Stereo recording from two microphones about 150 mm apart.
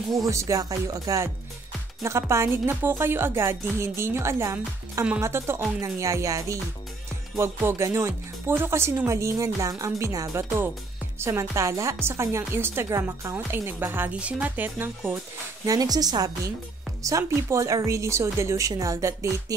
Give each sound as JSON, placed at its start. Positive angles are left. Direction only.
{"t": 0.2, "sound": "speech", "side_deg": -20}
{"t": 15.6, "sound": "speech", "side_deg": -25}